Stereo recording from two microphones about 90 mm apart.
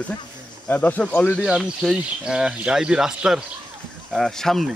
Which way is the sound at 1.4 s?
5° right (ahead or behind).